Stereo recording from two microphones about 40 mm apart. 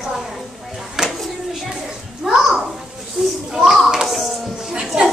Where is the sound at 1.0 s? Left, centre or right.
Centre.